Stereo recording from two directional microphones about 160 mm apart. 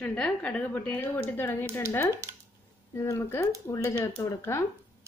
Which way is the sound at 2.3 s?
15° right (ahead or behind).